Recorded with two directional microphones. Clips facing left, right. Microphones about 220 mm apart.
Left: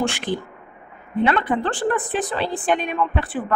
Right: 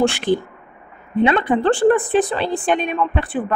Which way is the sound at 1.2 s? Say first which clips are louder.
Right 4 dB; 20° right (ahead or behind).